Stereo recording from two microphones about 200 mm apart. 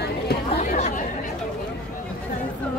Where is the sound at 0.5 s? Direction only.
35° left (ahead or behind).